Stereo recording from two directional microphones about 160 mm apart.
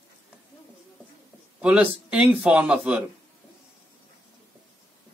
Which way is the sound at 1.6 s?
10° right (ahead or behind).